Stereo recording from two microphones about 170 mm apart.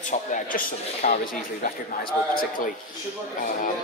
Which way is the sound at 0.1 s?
45° left (ahead or behind).